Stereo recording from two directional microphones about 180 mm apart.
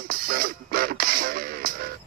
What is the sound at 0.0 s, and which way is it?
Music, 55° right (ahead or behind).